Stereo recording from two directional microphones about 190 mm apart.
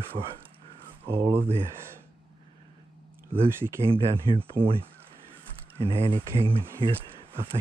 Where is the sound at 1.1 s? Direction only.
15° right (ahead or behind).